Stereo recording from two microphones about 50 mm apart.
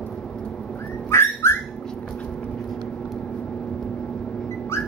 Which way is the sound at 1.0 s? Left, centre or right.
Left.